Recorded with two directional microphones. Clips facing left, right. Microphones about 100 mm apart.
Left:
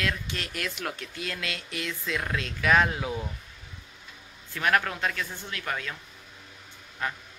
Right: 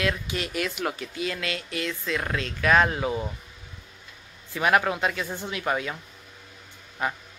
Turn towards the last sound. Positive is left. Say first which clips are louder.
# right 4 dB
turn(degrees=-15)  # may be behind; listen again after turning